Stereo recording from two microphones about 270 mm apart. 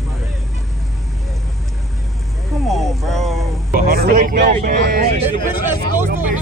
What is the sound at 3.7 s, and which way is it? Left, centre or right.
Speech, right.